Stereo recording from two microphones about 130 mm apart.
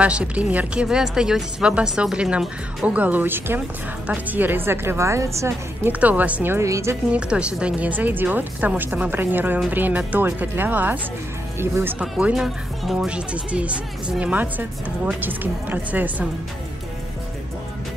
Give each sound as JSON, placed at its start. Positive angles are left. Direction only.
{"t": 0.0, "sound": "speech", "side_deg": -10}
{"t": 7.1, "sound": "speech", "side_deg": -10}